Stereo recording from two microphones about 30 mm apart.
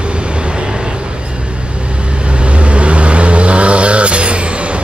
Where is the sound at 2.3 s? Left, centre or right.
Right.